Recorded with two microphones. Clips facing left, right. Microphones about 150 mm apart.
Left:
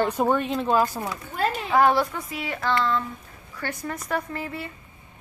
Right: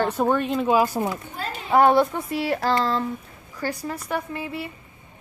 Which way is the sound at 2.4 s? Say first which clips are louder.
Right 3 dB; 35° right (ahead or behind).